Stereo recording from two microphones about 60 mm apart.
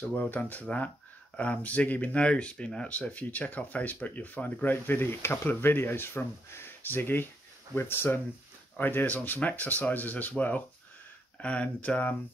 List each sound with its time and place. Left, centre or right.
0.1 s speech: left
5.5 s speech: left